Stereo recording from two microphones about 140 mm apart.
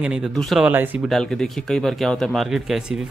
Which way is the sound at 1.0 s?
5° left (ahead or behind).